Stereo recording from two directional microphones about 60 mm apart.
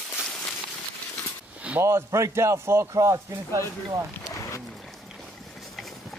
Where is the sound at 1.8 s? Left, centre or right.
Right.